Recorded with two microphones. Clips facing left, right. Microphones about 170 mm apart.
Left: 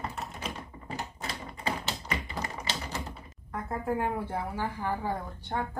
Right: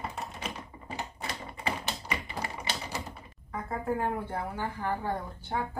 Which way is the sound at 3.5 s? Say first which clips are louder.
Even; centre (ahead or behind).